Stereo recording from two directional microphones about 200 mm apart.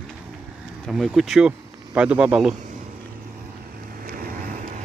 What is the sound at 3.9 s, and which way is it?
Vehicle, 45° right (ahead or behind).